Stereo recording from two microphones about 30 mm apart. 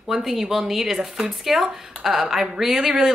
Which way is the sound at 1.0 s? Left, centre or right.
Right.